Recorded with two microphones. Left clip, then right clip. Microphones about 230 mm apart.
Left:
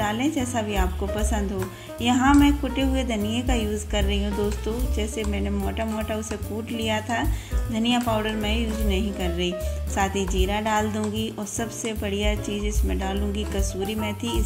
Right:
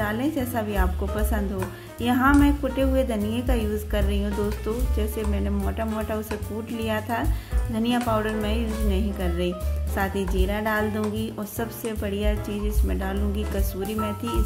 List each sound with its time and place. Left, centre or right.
0.0 s speech: centre